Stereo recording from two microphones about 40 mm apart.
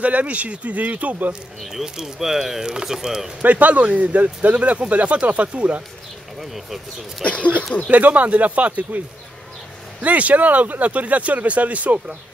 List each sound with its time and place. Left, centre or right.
0.0 s speech: right
1.6 s speech: centre
3.4 s speech: right
6.4 s speech: centre
7.9 s speech: right
10.0 s speech: right